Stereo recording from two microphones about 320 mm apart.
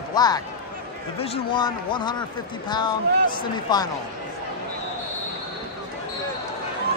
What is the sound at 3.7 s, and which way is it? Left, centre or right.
Speech, centre.